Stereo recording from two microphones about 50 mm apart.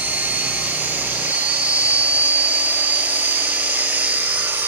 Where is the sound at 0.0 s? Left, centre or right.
Right.